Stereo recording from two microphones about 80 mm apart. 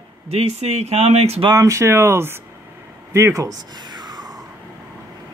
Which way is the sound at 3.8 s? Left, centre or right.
Right.